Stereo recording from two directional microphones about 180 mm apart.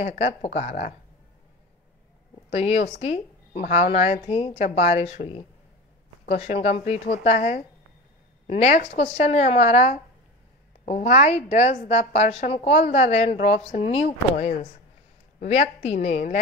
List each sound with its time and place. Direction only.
0.0 s a woman's voice: 40° left (ahead or behind)
2.5 s a woman's voice: 35° left (ahead or behind)